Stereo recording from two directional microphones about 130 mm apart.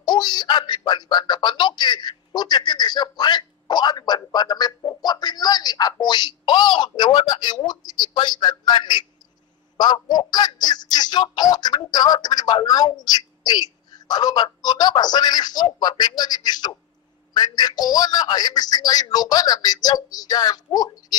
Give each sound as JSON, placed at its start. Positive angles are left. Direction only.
{"t": 0.0, "sound": "speech", "side_deg": 35}